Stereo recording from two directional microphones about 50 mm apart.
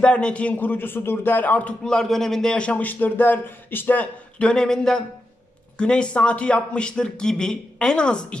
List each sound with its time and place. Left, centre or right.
0.0 s a man's voice: centre
0.6 s speech: left
1.9 s speech: centre
2.5 s a man's voice: left
2.8 s speech: left
4.4 s a man's voice: centre